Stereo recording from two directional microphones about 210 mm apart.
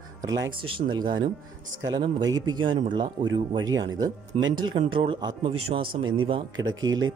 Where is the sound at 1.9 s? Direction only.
20° right (ahead or behind).